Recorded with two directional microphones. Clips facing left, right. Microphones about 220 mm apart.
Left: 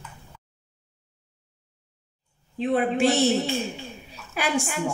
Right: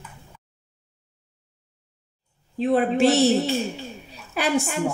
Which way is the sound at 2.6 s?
40° right (ahead or behind).